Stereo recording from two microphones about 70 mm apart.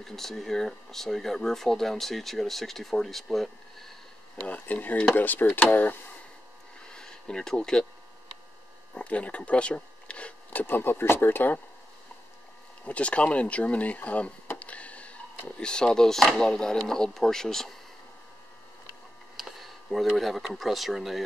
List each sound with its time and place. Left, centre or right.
0.0 s speech: centre
4.4 s speech: left
6.9 s a sound: centre
8.9 s speech: centre
12.8 s speech: centre
19.3 s a sound: centre
20.2 s speech: centre